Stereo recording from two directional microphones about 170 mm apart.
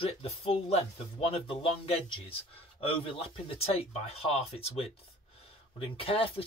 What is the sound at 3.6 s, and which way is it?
Speech, 35° left (ahead or behind).